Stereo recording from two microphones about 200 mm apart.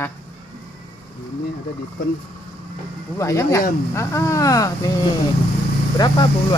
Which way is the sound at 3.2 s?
15° left (ahead or behind).